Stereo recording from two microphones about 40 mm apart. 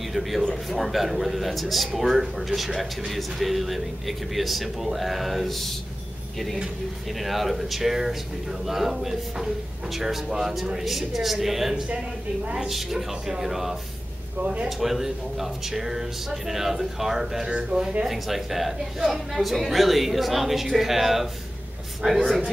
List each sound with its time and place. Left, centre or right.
0.1 s a man's voice: centre
7.1 s a man's voice: centre
14.4 s speech: right
14.8 s speech: centre
17.5 s speech: centre
18.0 s a man's voice: centre